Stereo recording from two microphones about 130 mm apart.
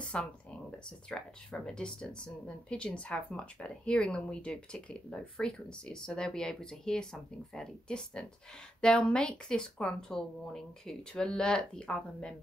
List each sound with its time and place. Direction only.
0.0 s speech: 10° left (ahead or behind)